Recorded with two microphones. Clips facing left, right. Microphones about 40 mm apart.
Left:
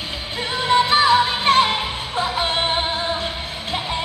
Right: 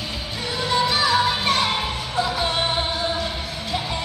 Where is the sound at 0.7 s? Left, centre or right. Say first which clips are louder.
Left 5 dB; left.